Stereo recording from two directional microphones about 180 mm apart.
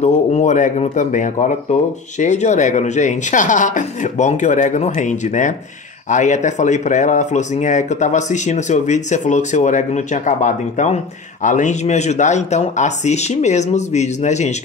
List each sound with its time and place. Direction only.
0.0 s speech: 40° left (ahead or behind)